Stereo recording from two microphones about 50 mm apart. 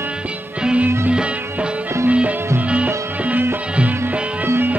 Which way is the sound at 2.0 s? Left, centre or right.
Right.